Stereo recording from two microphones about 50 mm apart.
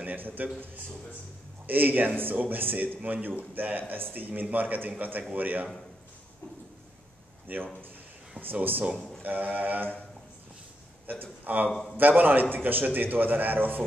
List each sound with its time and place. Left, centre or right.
0.0 s a man's voice: right
1.7 s a man's voice: right
7.5 s a man's voice: right
11.1 s a man's voice: right
11.7 s a man's voice: centre
12.0 s a man's voice: right